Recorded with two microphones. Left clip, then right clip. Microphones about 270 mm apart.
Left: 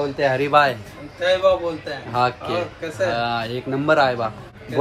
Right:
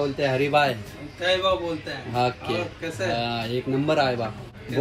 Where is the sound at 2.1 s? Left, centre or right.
Centre.